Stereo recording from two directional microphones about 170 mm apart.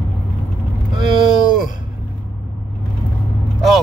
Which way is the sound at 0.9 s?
25° right (ahead or behind).